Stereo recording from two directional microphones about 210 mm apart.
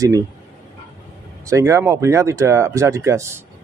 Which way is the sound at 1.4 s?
15° right (ahead or behind).